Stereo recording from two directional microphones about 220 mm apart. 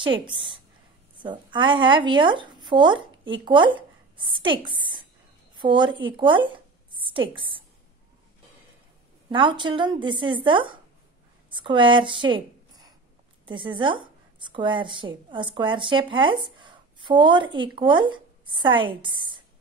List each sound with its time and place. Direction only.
0.3 s a woman's voice: 20° right (ahead or behind)
9.3 s a woman's voice: 20° right (ahead or behind)